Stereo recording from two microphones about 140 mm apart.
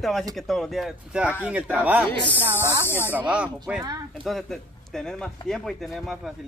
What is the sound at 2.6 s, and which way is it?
Speech, 15° left (ahead or behind).